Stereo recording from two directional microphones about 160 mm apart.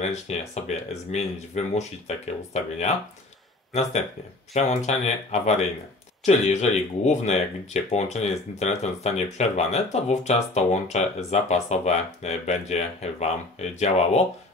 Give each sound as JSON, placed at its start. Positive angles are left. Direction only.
{"t": 0.0, "sound": "speech", "side_deg": 40}
{"t": 4.6, "sound": "speech", "side_deg": 45}